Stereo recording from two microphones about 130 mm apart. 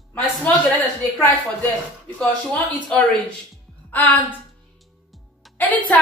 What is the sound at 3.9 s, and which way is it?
Speech, 15° left (ahead or behind).